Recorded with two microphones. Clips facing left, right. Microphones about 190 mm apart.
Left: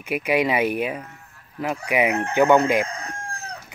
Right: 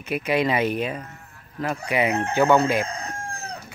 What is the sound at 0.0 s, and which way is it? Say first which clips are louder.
Speech: left 1 dB; 15° left (ahead or behind).